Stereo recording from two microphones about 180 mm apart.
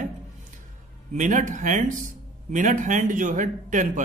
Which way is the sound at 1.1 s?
45° right (ahead or behind).